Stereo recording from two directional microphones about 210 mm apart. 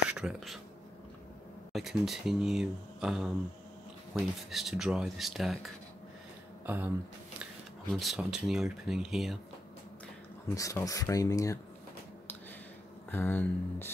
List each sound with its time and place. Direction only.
0.1 s speech: 5° right (ahead or behind)
1.7 s speech: centre (ahead or behind)
6.6 s a sound: 10° right (ahead or behind)
7.9 s speech: centre (ahead or behind)
10.5 s speech: 15° left (ahead or behind)
13.1 s speech: 10° left (ahead or behind)